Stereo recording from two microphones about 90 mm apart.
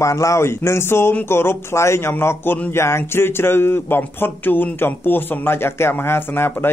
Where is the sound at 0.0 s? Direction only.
35° left (ahead or behind).